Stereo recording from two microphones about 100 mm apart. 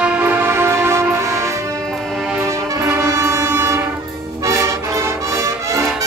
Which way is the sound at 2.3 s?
10° right (ahead or behind).